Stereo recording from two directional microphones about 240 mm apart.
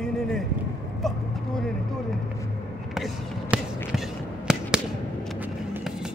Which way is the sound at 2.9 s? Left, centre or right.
Centre.